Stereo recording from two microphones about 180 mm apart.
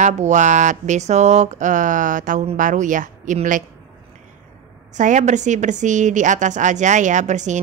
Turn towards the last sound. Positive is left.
turn(degrees=-40)  # may be behind; listen again after turning